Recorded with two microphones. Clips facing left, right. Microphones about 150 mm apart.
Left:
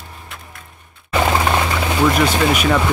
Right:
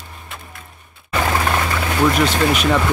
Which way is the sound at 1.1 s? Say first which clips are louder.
Left 2 dB; 20° left (ahead or behind).